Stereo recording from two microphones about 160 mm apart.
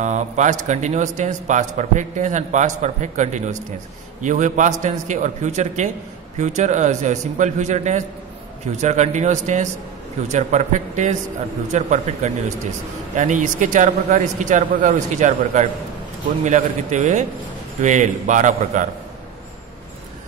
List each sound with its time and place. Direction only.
0.0 s a man's voice: 50° right (ahead or behind)